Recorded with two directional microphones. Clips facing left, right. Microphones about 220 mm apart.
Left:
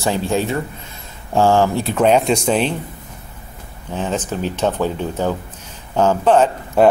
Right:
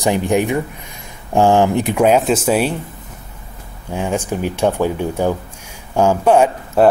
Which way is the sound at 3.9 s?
10° right (ahead or behind).